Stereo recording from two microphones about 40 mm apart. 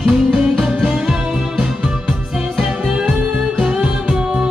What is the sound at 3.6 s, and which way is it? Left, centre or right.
Music, centre.